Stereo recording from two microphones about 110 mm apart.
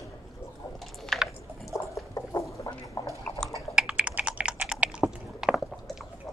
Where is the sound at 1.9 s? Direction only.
30° left (ahead or behind).